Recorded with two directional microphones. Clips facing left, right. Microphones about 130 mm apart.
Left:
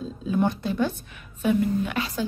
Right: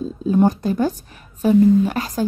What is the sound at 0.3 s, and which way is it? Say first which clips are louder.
A woman's voice: right 7 dB; 40° right (ahead or behind).